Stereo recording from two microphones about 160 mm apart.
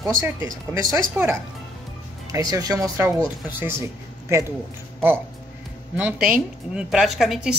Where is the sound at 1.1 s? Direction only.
10° right (ahead or behind).